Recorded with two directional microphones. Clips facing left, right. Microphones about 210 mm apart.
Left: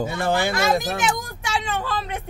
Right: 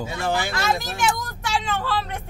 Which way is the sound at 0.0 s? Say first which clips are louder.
Left 3 dB; 55° left (ahead or behind).